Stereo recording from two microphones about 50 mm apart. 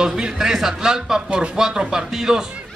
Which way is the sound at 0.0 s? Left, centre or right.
Centre.